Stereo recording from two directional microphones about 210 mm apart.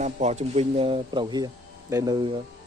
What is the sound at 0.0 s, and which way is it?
Speech, 30° right (ahead or behind).